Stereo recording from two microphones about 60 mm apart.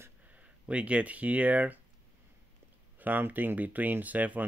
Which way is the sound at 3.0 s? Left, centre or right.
Right.